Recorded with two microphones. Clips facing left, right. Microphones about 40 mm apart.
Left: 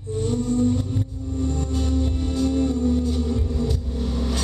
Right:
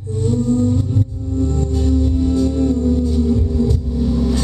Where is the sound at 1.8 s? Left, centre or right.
Centre.